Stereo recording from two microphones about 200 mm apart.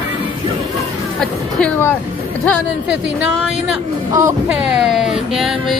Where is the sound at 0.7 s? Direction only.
5° left (ahead or behind).